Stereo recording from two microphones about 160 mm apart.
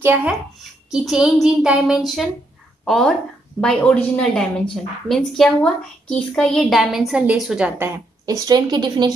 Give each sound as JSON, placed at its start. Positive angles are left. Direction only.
{"t": 0.0, "sound": "a woman's voice", "side_deg": -10}
{"t": 8.3, "sound": "speech", "side_deg": -20}